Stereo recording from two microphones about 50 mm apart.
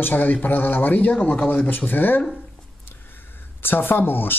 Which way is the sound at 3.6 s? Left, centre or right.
Left.